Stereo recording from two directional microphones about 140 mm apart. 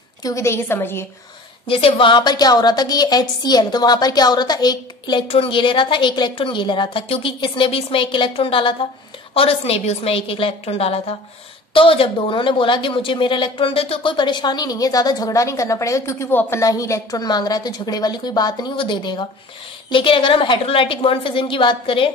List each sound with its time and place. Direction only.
0.2 s speech: 20° left (ahead or behind)
1.7 s a woman's voice: 40° left (ahead or behind)